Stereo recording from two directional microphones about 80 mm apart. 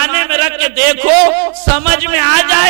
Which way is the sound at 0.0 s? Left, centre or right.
Centre.